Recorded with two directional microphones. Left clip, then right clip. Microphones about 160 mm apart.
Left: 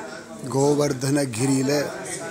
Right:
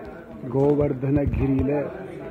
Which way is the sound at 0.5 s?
35° left (ahead or behind).